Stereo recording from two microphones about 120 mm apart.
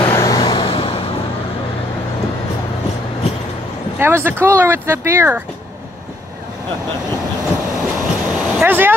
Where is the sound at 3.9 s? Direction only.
20° right (ahead or behind).